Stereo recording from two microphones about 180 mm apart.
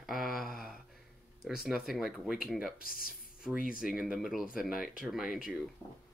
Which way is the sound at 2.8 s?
50° left (ahead or behind).